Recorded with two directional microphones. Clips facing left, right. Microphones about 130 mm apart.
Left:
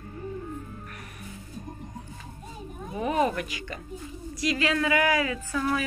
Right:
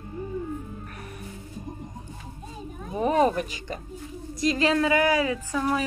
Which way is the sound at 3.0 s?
35° right (ahead or behind).